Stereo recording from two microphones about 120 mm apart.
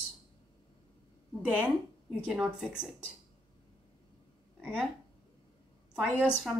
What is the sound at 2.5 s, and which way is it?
Speech, 5° right (ahead or behind).